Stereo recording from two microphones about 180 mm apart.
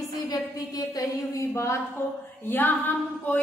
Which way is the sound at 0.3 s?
20° left (ahead or behind).